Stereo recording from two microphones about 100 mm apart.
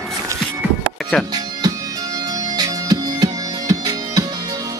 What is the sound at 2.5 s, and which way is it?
Music, 40° right (ahead or behind).